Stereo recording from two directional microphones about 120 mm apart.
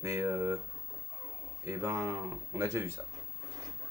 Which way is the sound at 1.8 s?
20° right (ahead or behind).